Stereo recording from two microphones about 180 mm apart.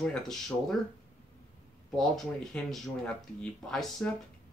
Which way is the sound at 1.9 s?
Centre (ahead or behind).